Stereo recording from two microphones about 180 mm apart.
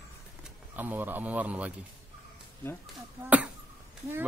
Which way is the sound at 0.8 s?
10° right (ahead or behind).